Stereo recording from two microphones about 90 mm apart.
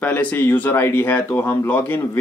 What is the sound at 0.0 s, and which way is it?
Speech, 20° left (ahead or behind).